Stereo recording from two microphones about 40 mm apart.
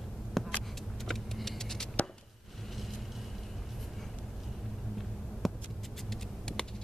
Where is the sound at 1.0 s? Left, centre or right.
Centre.